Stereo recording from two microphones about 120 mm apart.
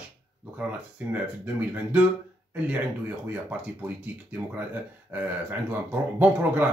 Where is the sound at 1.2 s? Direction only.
10° right (ahead or behind).